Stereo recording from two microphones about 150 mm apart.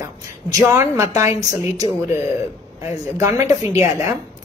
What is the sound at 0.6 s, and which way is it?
Speech, 20° right (ahead or behind).